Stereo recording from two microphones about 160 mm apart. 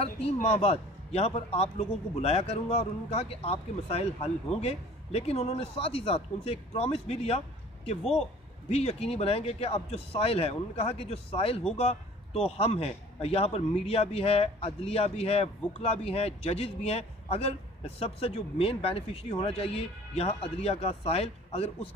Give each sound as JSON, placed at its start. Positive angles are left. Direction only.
{"t": 0.0, "sound": "a man's voice", "side_deg": 40}